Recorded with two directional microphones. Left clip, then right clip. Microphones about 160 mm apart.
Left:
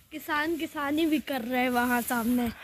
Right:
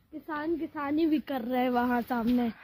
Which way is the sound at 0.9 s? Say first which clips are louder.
Right 1 dB; 30° right (ahead or behind).